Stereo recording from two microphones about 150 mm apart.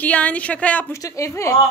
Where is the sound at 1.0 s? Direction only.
20° left (ahead or behind).